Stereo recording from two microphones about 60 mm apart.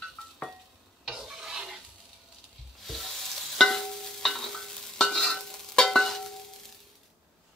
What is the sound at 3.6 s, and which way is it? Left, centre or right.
Stir, centre.